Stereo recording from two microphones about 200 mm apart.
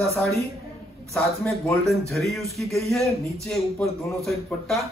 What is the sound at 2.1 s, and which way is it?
Speech, centre (ahead or behind).